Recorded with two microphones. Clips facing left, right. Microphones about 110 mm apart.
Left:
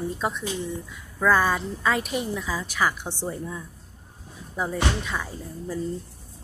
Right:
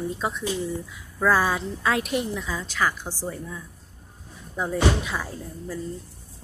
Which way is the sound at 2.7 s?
10° left (ahead or behind).